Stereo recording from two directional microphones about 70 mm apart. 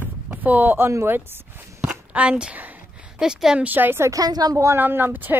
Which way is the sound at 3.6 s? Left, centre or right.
Right.